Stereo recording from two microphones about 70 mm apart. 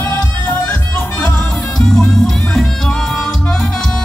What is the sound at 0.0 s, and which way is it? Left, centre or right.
Music, left.